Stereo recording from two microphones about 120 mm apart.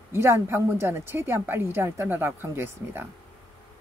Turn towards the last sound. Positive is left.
turn(degrees=-15)  # may be behind; listen again after turning